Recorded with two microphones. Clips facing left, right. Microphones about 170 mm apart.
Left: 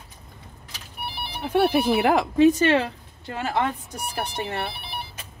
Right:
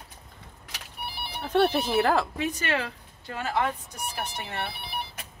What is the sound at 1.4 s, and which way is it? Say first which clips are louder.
Speech: left 3 dB; 10° left (ahead or behind).